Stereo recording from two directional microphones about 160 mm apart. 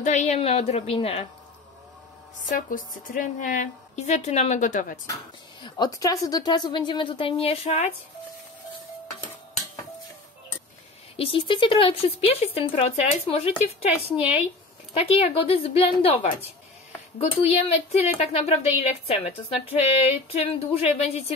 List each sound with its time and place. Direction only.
0.0 s speech: 45° left (ahead or behind)
2.5 s a woman's voice: 55° left (ahead or behind)
5.6 s a woman's voice: 25° left (ahead or behind); by 7.9 s 45° left (ahead or behind)
11.1 s speech: 30° left (ahead or behind)
14.1 s a woman's voice: 10° right (ahead or behind)
15.0 s a woman's voice: 40° left (ahead or behind)
20.0 s speech: 40° left (ahead or behind)